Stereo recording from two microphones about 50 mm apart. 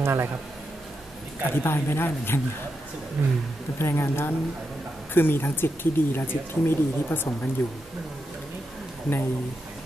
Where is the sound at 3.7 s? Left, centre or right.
Left.